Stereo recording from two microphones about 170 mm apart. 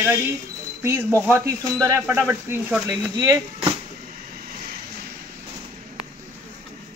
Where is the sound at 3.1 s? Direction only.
25° right (ahead or behind).